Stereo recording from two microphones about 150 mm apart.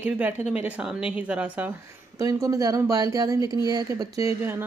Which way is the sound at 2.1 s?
20° right (ahead or behind).